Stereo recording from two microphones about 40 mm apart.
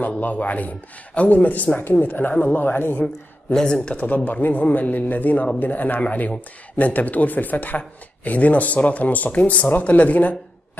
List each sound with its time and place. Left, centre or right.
0.2 s speech: left
3.5 s speech: left
3.9 s speech: left